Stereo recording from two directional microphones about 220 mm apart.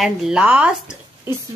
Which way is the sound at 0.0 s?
Centre (ahead or behind).